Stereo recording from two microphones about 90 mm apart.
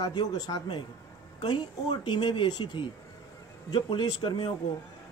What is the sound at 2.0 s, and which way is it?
Speech, 65° left (ahead or behind).